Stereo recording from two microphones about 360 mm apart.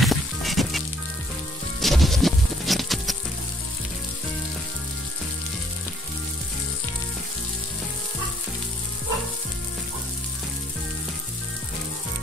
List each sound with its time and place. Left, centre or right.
0.0 s music: centre